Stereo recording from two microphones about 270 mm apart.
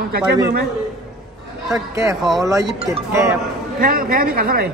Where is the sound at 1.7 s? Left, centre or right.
Centre.